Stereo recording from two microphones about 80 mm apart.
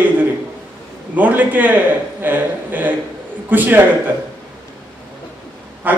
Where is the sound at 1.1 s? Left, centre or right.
Right.